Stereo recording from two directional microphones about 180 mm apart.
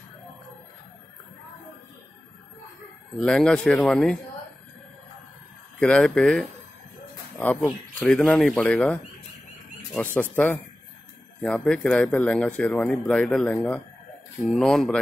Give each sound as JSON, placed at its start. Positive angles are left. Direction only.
{"t": 3.2, "sound": "speech", "side_deg": 5}
{"t": 5.8, "sound": "speech", "side_deg": 5}
{"t": 10.3, "sound": "speech", "side_deg": 10}